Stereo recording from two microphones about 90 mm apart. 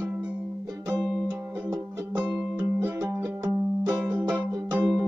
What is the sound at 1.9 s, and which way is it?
Music, 30° right (ahead or behind).